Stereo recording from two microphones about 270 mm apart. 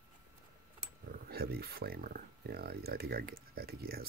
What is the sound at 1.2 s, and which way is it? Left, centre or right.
Speech, right.